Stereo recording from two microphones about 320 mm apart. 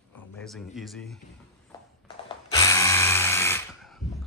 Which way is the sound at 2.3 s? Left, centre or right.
Centre.